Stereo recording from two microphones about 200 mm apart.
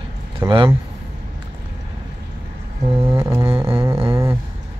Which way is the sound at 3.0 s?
15° right (ahead or behind).